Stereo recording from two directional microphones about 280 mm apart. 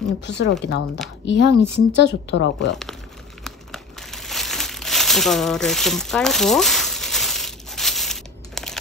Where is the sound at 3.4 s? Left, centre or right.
Centre.